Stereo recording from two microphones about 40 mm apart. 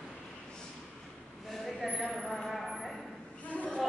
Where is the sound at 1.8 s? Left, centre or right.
Centre.